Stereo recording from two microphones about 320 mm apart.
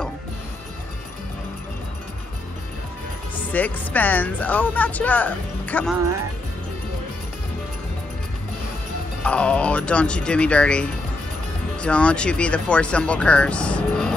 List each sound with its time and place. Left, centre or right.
3.5 s speech: centre
9.2 s speech: centre